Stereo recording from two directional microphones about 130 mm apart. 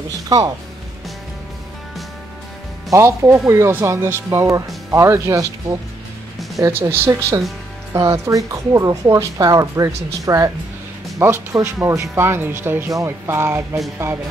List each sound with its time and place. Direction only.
2.9 s speech: 20° right (ahead or behind)